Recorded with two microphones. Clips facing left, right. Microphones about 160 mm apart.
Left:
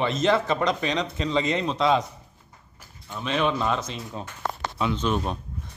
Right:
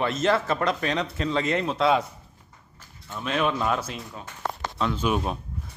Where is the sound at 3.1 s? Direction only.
5° right (ahead or behind).